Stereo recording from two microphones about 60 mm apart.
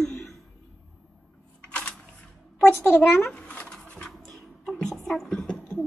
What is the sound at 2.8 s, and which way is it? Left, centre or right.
Speech, left.